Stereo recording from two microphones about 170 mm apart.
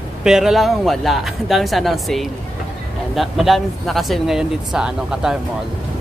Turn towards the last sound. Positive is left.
turn(degrees=-5)  # may be behind; listen again after turning